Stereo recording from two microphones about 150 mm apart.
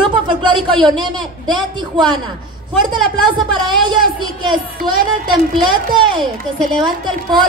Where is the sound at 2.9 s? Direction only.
30° right (ahead or behind).